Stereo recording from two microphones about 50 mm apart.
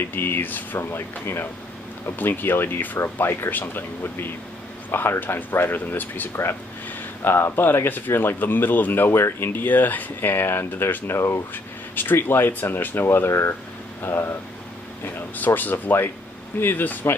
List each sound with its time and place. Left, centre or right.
0.0 s speech: left
0.7 s speech: left
7.2 s speech: left
9.5 s speech: left
11.1 s speech: left
11.5 s speech: left
13.3 s speech: left
14.0 s speech: left
15.1 s speech: left